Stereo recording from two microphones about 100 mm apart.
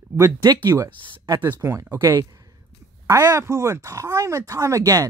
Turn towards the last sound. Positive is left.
turn(degrees=-35)  # may be behind; listen again after turning